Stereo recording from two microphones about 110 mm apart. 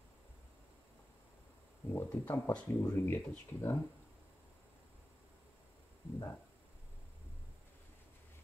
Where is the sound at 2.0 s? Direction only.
15° left (ahead or behind).